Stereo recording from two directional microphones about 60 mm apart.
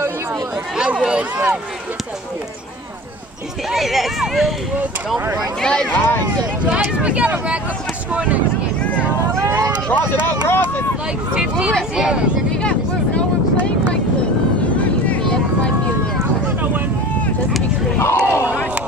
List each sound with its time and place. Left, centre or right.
0.7 s speech: centre
3.7 s speech: centre
5.6 s speech: centre
5.9 s speech: left
6.6 s speech: centre
9.8 s speech: left
11.3 s speech: centre
17.9 s battle cry: left